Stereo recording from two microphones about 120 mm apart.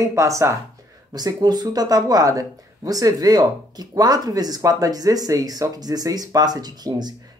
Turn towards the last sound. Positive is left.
turn(degrees=-35)  # may be behind; listen again after turning